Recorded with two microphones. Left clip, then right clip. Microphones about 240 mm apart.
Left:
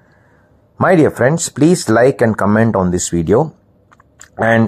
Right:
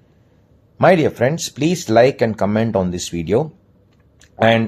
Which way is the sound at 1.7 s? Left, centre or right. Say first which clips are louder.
Left 2 dB; left.